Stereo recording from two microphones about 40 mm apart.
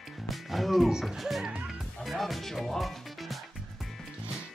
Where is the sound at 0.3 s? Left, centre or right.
Centre.